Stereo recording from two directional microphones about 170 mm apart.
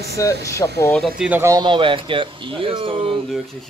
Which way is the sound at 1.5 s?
30° right (ahead or behind).